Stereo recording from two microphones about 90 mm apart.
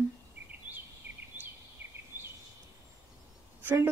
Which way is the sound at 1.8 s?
20° right (ahead or behind).